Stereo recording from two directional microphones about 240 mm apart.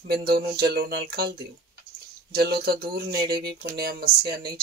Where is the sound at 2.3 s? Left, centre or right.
Right.